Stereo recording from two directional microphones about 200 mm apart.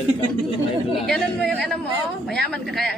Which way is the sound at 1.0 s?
Centre (ahead or behind).